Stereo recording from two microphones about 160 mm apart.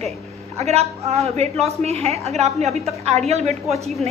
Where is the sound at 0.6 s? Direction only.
40° right (ahead or behind).